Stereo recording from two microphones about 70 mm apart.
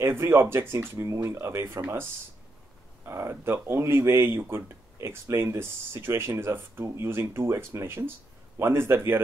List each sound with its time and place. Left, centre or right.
0.0 s speech: right
3.1 s speech: right